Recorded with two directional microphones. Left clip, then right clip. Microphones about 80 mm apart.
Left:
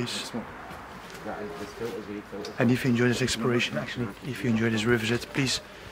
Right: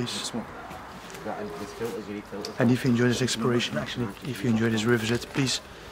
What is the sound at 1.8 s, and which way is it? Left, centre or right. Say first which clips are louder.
Speech: right 2 dB; right.